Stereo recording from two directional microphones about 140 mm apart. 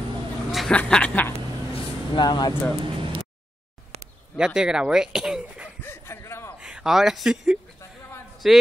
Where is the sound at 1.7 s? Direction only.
35° left (ahead or behind).